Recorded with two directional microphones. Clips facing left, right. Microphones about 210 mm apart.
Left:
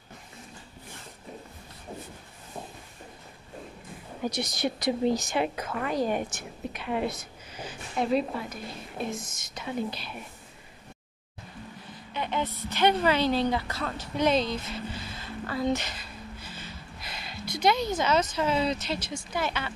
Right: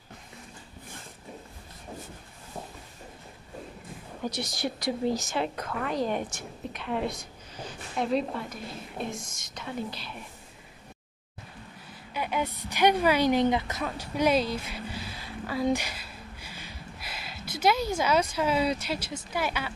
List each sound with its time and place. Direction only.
4.4 s speech: 20° left (ahead or behind)
5.6 s a woman's voice: 5° left (ahead or behind)
12.1 s a woman's voice: 10° right (ahead or behind)